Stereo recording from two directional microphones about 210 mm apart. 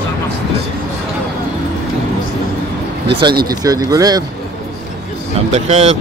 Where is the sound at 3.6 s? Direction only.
15° right (ahead or behind).